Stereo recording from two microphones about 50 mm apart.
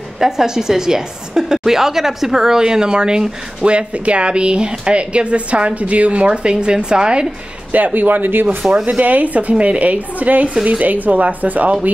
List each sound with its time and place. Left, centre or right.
0.2 s a woman's voice: centre
7.7 s speech: right
8.8 s a woman's voice: right